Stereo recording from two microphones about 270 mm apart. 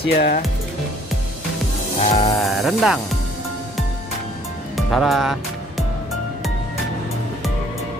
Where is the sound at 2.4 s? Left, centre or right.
Centre.